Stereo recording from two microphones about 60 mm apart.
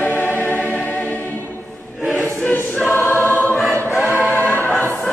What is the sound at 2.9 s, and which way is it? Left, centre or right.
Choir, left.